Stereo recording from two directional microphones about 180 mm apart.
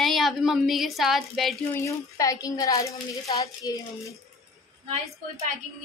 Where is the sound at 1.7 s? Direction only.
15° left (ahead or behind).